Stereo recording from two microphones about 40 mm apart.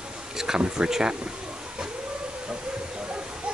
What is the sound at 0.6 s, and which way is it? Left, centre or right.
Speech, right.